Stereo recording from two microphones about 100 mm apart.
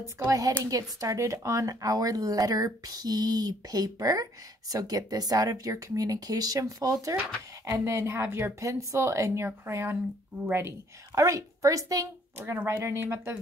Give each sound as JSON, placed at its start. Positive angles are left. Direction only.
{"t": 0.0, "sound": "a woman's voice", "side_deg": -35}
{"t": 12.4, "sound": "speech", "side_deg": -25}